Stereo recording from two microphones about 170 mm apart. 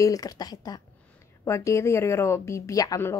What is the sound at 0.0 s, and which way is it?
A woman's voice, 20° left (ahead or behind).